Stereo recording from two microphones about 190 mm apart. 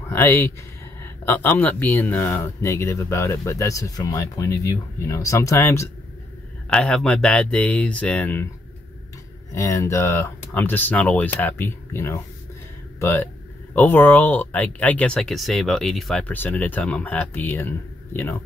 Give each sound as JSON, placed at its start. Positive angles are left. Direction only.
{"t": 0.1, "sound": "speech", "side_deg": 15}
{"t": 9.5, "sound": "speech", "side_deg": 15}